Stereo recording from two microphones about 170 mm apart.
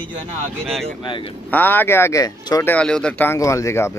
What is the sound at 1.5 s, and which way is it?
Speech, 10° left (ahead or behind).